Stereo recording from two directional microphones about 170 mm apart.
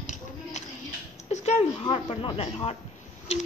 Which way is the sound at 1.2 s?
40° left (ahead or behind).